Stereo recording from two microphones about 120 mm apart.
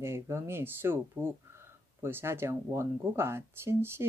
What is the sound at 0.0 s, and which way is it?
Speech, 20° right (ahead or behind).